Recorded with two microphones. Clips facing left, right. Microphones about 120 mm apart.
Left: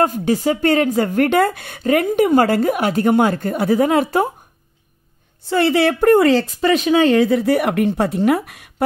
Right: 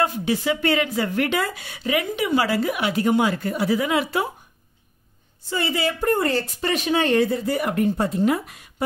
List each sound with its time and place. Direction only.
0.0 s a woman's voice: 45° left (ahead or behind)
5.5 s a woman's voice: 65° left (ahead or behind); by 6.4 s 90° left
7.2 s a woman's voice: 75° left (ahead or behind)